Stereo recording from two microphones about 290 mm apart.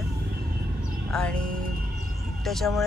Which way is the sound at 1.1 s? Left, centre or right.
Centre.